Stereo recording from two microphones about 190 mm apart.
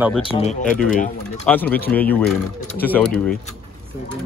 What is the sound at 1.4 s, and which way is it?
Speech, 10° left (ahead or behind).